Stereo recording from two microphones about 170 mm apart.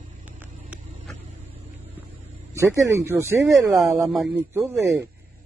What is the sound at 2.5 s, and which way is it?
Speech, 15° right (ahead or behind).